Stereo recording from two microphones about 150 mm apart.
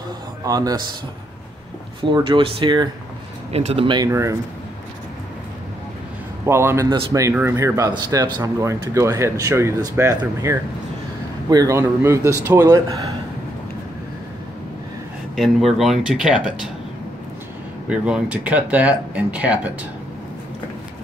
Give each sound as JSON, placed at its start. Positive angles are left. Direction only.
{"t": 0.5, "sound": "speech", "side_deg": -25}
{"t": 2.1, "sound": "speech", "side_deg": -35}
{"t": 4.1, "sound": "speech", "side_deg": -20}
{"t": 6.4, "sound": "speech", "side_deg": -15}
{"t": 15.3, "sound": "speech", "side_deg": 0}
{"t": 17.8, "sound": "speech", "side_deg": -5}